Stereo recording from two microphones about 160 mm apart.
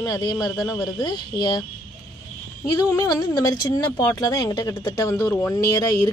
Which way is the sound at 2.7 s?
20° left (ahead or behind).